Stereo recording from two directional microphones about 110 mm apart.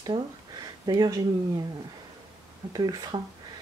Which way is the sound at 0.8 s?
35° right (ahead or behind).